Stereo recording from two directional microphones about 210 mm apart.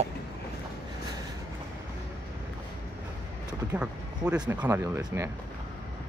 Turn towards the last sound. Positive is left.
turn(degrees=-10)  # may be behind; listen again after turning